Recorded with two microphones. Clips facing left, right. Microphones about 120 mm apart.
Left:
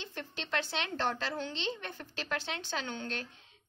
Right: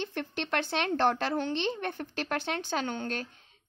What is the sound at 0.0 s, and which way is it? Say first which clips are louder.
Speech: right 8 dB; 60° right (ahead or behind).